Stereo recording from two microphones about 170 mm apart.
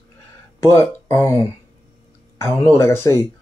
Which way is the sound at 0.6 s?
15° left (ahead or behind).